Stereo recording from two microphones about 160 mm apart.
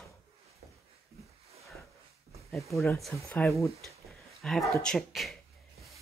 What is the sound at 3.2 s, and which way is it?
Speech, 5° left (ahead or behind).